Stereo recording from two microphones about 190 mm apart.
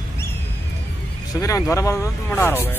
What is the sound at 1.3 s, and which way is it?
Speech, 15° left (ahead or behind).